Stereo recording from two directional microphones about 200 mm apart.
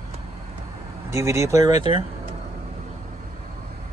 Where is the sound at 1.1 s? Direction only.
15° right (ahead or behind).